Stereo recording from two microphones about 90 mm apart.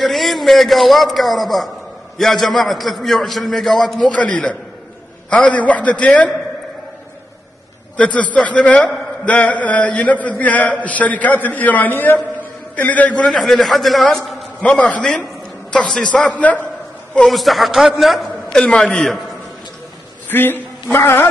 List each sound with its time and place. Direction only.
0.0 s a man's voice: centre (ahead or behind)
8.0 s a man's voice: 15° left (ahead or behind)
13.3 s a man's voice: centre (ahead or behind)
14.6 s a man's voice: 15° left (ahead or behind)
17.3 s a man's voice: centre (ahead or behind)
20.2 s a man's voice: 20° left (ahead or behind)